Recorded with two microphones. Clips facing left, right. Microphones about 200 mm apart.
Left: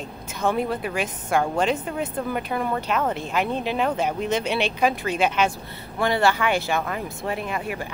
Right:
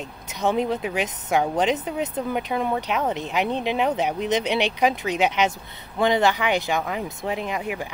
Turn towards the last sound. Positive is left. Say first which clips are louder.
# right 1 dB
turn(degrees=-15)  # may be behind; listen again after turning